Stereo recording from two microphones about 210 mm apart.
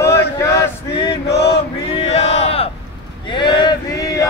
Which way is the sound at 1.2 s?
55° left (ahead or behind).